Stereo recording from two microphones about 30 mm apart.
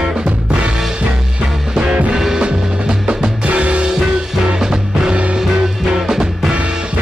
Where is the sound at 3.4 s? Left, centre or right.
Right.